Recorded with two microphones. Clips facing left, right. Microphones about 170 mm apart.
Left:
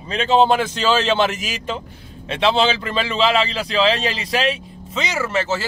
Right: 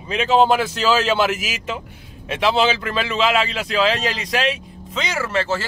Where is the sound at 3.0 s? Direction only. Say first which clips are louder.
Left 2 dB; 35° left (ahead or behind).